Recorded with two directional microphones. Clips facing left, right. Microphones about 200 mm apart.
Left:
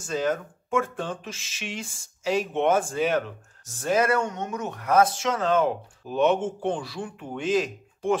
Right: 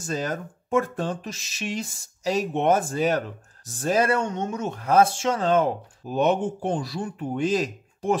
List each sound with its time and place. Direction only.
0.0 s speech: 40° right (ahead or behind)